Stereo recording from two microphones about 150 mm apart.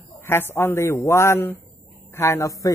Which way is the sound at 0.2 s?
15° left (ahead or behind).